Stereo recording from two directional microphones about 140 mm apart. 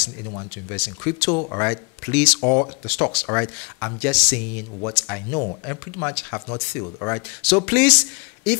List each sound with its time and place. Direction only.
0.3 s speech: 15° left (ahead or behind)
0.7 s speech: 5° left (ahead or behind)
1.3 s speech: 15° left (ahead or behind)